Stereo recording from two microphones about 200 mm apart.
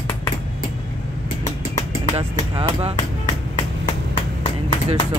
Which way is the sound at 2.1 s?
30° right (ahead or behind).